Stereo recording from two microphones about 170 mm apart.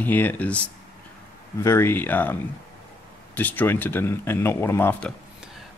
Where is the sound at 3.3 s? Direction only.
10° left (ahead or behind).